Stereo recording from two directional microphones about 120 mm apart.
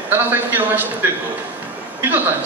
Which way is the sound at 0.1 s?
15° right (ahead or behind).